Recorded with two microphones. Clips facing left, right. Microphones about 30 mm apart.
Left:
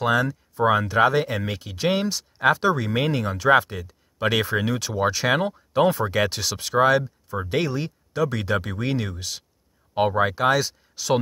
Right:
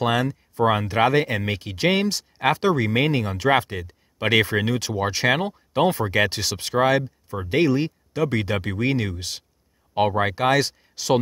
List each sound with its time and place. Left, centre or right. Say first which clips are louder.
0.0 s speech: left 1 dB; right
0.7 s speech: even; right
5.2 s speech: right 2 dB; centre
5.7 s speech: even; right
9.9 s speech: even; centre
10.2 s speech: even; right